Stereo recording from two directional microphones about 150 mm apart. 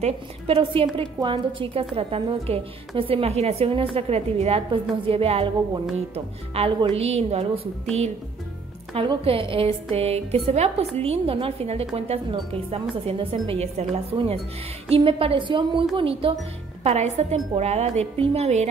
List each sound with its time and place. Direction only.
0.0 s a woman's voice: 35° right (ahead or behind)
8.9 s a woman's voice: 35° right (ahead or behind)